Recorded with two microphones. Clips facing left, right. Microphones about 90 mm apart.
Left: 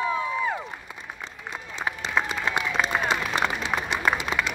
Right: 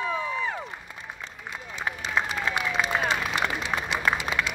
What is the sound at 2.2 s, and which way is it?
Crowd, 5° left (ahead or behind).